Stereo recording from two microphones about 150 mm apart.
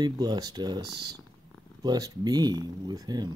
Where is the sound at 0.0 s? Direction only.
25° right (ahead or behind).